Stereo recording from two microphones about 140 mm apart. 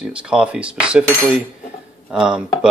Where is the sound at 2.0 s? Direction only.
5° right (ahead or behind).